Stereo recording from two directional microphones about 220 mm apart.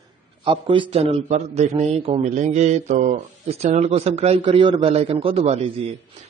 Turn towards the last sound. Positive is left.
turn(degrees=-30)  # may be behind; listen again after turning